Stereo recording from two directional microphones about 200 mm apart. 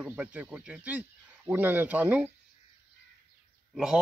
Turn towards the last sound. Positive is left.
turn(degrees=-5)  # may be behind; listen again after turning